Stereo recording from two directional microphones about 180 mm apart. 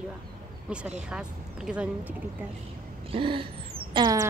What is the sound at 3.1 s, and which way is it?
Gasp, 30° right (ahead or behind).